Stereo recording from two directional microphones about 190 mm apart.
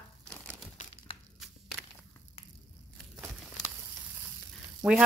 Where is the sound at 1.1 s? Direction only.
30° left (ahead or behind).